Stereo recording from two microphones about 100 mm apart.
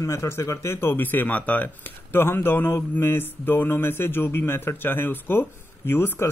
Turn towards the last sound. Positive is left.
turn(degrees=20)  # may be behind; listen again after turning